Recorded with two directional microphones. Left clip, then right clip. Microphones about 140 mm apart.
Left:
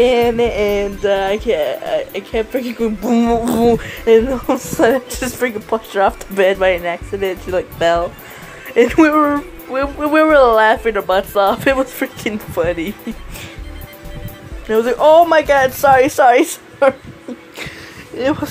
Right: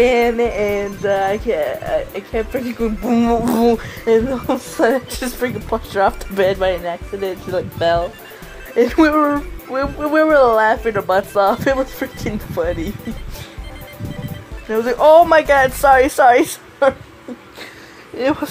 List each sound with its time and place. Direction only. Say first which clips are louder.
0.0 s speech: left 1 dB; 5° left (ahead or behind)
3.3 s a woman's voice: left 1 dB; centre (ahead or behind)
4.2 s a woman's voice: left 3 dB; 15° left (ahead or behind)
9.9 s speech: left 2 dB; 15° left (ahead or behind)
10.2 s a woman's voice: left 2 dB; centre (ahead or behind)
11.8 s speech: left 3 dB; 20° left (ahead or behind)
15.0 s a woman's voice: right 1 dB; 5° left (ahead or behind)
18.1 s a woman's voice: left 1 dB; 5° left (ahead or behind)